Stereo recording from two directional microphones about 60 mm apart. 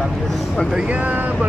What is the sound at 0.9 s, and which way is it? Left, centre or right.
Speech, right.